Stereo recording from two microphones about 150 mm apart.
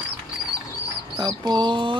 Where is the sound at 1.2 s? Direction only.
30° right (ahead or behind).